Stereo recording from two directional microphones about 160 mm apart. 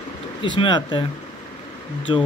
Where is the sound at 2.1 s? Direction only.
30° left (ahead or behind).